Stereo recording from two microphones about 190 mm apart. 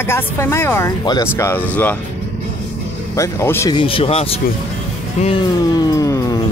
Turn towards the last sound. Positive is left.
turn(degrees=20)  # may be behind; listen again after turning